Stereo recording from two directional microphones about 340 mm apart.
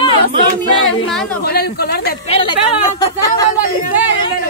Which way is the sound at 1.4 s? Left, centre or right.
Left.